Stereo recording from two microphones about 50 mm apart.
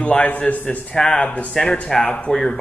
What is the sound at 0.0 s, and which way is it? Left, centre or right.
A man's voice, left.